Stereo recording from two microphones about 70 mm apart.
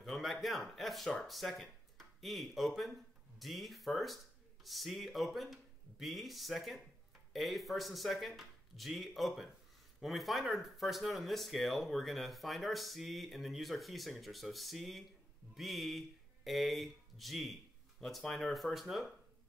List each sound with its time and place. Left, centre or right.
0.0 s speech: centre